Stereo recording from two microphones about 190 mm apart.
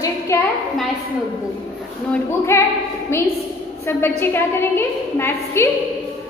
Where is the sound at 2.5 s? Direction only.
15° left (ahead or behind).